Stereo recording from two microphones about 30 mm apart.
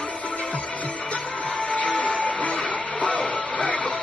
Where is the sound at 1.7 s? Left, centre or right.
Left.